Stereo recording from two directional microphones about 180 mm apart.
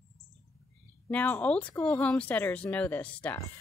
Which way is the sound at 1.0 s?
10° left (ahead or behind).